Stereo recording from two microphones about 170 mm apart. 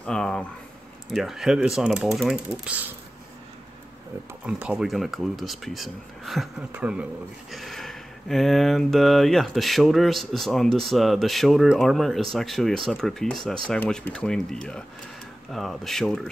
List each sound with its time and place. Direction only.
0.0 s speech: 5° left (ahead or behind)
4.5 s speech: 5° right (ahead or behind)